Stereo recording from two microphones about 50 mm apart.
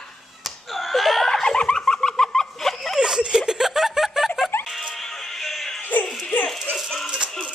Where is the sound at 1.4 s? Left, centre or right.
Centre.